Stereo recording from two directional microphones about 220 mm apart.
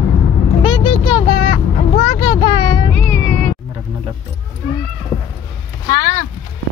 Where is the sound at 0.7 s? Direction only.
20° left (ahead or behind).